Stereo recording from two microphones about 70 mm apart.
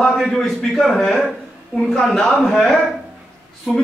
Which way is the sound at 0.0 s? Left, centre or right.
Centre.